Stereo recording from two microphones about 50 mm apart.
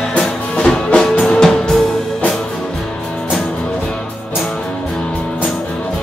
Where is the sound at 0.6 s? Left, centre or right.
Centre.